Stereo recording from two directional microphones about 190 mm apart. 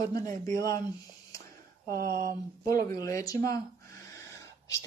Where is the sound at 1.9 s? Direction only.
55° right (ahead or behind).